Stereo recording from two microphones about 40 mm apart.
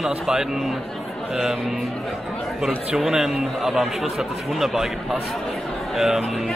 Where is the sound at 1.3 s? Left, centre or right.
Centre.